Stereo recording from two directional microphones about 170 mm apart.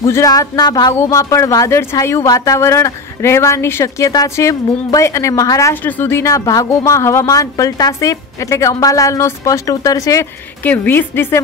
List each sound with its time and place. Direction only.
0.0 s speech: 20° left (ahead or behind)